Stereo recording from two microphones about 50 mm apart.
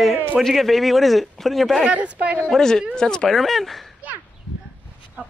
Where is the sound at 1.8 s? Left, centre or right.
Right.